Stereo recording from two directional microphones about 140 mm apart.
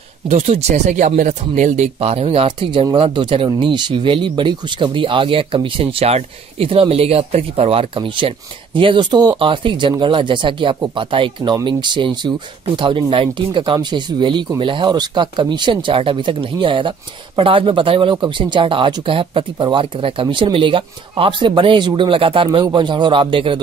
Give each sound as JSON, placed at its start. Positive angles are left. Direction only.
{"t": 0.3, "sound": "speech", "side_deg": -50}